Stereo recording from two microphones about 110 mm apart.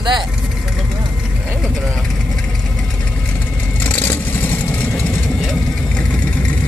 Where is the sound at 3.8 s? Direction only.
20° left (ahead or behind).